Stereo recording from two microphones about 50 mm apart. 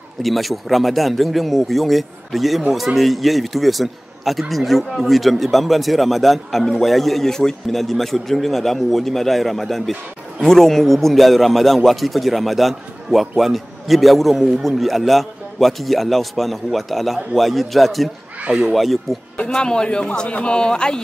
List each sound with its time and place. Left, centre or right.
0.2 s speech: centre
19.3 s speech: centre